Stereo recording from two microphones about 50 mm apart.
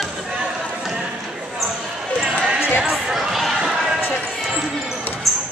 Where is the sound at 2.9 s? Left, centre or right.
Centre.